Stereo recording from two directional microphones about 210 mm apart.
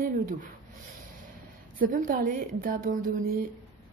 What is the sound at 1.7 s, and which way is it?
Speech, 40° right (ahead or behind).